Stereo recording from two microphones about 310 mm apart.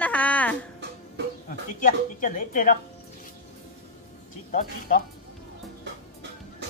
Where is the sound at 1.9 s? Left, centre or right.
Left.